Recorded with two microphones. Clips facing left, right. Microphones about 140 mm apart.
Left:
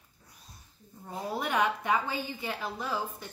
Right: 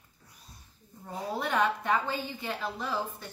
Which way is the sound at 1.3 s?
5° left (ahead or behind).